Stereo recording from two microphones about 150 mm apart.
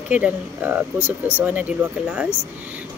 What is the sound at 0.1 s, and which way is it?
Speech, 10° right (ahead or behind).